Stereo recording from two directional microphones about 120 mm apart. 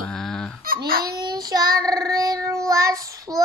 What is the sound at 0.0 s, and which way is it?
Fowl, 5° left (ahead or behind).